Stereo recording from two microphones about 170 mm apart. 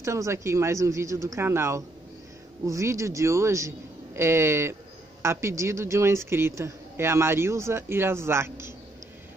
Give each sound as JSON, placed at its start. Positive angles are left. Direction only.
{"t": 0.0, "sound": "a man's voice", "side_deg": -15}